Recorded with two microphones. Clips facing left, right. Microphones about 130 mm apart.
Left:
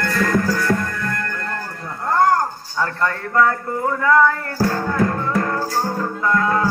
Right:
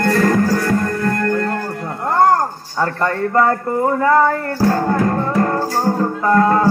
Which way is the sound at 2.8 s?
40° right (ahead or behind).